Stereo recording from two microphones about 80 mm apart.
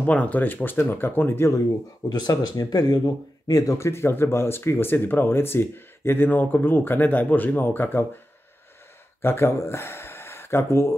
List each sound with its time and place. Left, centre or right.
0.0 s speech: centre
2.0 s speech: left
9.2 s speech: left